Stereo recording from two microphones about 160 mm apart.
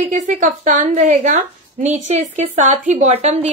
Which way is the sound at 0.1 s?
50° right (ahead or behind).